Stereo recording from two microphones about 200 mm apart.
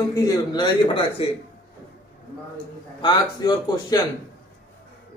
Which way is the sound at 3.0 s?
20° left (ahead or behind).